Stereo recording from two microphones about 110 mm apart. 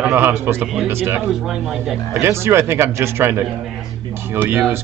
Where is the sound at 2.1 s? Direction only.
25° right (ahead or behind).